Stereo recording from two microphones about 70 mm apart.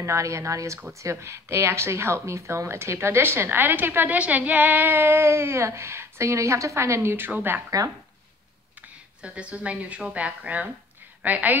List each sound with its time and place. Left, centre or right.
0.0 s speech: right
8.8 s a woman's voice: centre